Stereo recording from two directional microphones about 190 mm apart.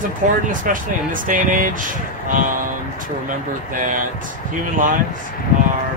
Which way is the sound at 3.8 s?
45° right (ahead or behind).